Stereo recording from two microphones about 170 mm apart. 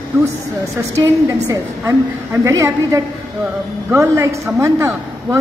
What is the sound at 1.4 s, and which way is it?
A woman's voice, 15° right (ahead or behind).